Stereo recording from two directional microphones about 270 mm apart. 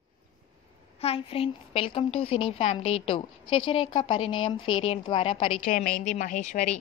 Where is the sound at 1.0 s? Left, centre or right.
Left.